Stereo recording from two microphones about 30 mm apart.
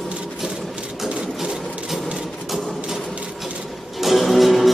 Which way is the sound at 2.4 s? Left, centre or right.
Centre.